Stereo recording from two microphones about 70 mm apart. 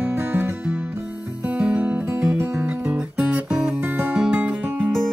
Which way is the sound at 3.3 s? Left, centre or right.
Centre.